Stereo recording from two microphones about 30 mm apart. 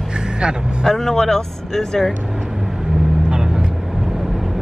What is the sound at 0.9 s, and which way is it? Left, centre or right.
Speech, centre.